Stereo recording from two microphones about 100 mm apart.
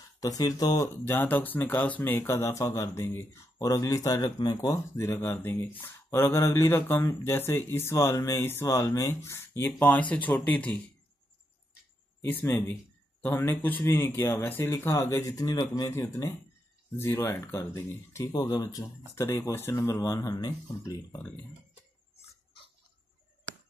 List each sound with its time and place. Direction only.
0.2 s speech: 40° left (ahead or behind)
1.0 s speech: 20° left (ahead or behind)
3.6 s speech: 35° left (ahead or behind)
4.9 s speech: 30° left (ahead or behind)
8.6 s speech: 40° left (ahead or behind)
9.7 s speech: 15° left (ahead or behind)
12.2 s speech: 20° left (ahead or behind)
18.3 s speech: 45° left (ahead or behind)
19.2 s speech: 25° left (ahead or behind)
19.9 s speech: 40° left (ahead or behind)
20.6 s speech: 25° left (ahead or behind)